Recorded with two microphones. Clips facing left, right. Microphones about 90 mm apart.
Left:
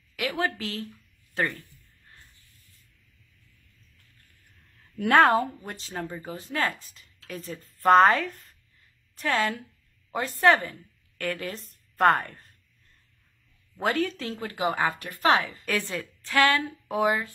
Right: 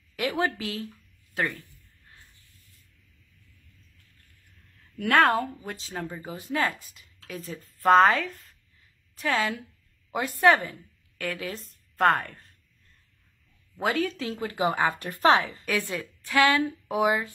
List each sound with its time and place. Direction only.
0.1 s speech: 20° right (ahead or behind)
0.6 s a woman's voice: 10° right (ahead or behind)
4.9 s speech: 20° left (ahead or behind)
5.4 s speech: centre (ahead or behind)
6.2 s a woman's voice: 15° right (ahead or behind); by 12.5 s centre (ahead or behind)
13.7 s speech: centre (ahead or behind)
14.3 s a woman's voice: 15° right (ahead or behind)
15.0 s speech: 35° right (ahead or behind)
15.3 s a woman's voice: 20° right (ahead or behind)